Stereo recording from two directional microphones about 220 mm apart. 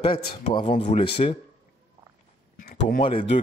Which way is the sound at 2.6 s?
35° left (ahead or behind).